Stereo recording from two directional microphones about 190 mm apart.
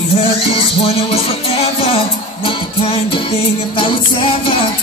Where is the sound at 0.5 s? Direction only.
30° left (ahead or behind).